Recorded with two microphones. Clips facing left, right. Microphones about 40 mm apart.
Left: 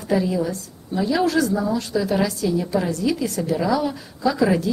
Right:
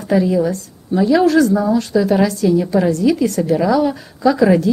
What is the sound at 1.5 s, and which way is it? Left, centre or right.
Speech, centre.